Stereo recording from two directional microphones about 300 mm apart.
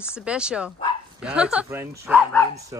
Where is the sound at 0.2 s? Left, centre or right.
Centre.